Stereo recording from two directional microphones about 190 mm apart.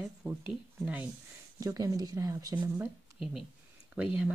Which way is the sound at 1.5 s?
20° right (ahead or behind).